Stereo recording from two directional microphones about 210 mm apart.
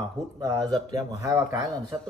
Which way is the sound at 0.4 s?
15° right (ahead or behind).